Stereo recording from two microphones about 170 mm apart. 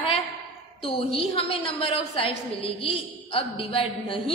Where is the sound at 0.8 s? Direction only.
35° left (ahead or behind).